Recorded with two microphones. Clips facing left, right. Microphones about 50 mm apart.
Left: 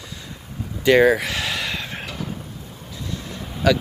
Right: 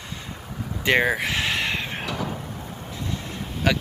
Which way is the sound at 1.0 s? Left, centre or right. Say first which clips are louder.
Left 5 dB; centre.